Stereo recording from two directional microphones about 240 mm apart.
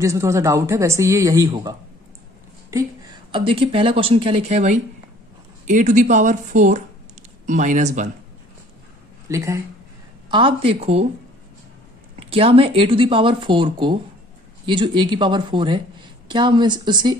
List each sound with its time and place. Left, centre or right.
0.0 s speech: centre; by 8.1 s right
9.3 s speech: centre
12.2 s speech: right